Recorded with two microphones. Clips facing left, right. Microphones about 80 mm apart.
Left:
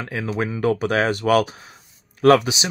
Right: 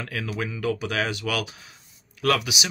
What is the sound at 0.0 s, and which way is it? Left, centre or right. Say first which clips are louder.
Speech: left 5 dB; left.